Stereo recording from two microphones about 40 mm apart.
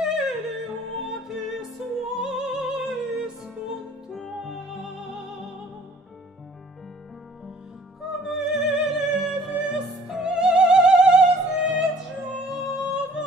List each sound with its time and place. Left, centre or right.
0.0 s yodeling: centre
1.0 s music: centre
4.4 s music: centre
8.0 s music: centre
10.2 s music: right